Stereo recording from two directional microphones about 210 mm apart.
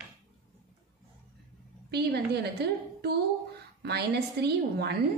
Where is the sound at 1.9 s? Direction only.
50° right (ahead or behind).